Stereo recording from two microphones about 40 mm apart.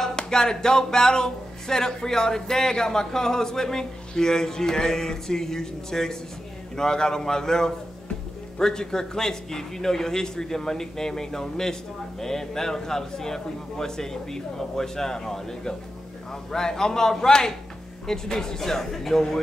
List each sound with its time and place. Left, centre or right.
0.1 s speech: centre